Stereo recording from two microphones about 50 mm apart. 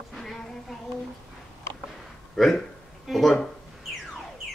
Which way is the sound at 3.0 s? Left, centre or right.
Centre.